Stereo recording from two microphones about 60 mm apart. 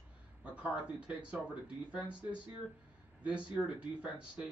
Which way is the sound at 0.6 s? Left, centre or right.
Centre.